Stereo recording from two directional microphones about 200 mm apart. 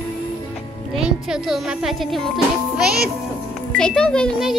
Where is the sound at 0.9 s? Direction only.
5° right (ahead or behind).